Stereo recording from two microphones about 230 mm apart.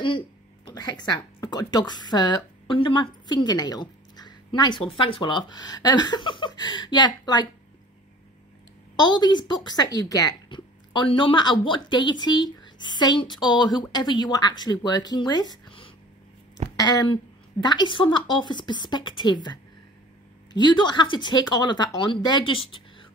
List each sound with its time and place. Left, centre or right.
0.7 s speech: centre
8.9 s speech: centre